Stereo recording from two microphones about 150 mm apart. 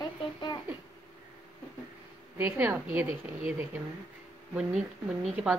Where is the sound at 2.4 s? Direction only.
15° right (ahead or behind).